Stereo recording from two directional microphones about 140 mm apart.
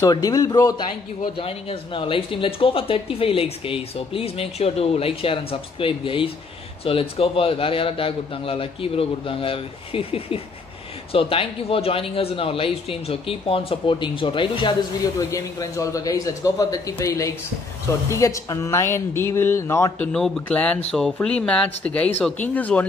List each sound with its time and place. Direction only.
0.0 s a man's voice: 25° left (ahead or behind)
20.1 s speech: 5° left (ahead or behind)